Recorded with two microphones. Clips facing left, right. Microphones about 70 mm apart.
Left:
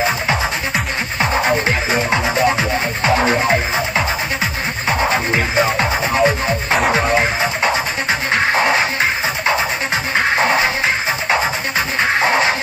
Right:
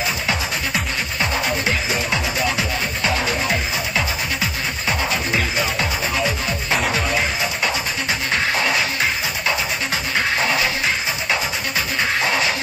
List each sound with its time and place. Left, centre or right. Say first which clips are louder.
1.2 s music: left 6 dB; left
12.0 s music: left 5 dB; left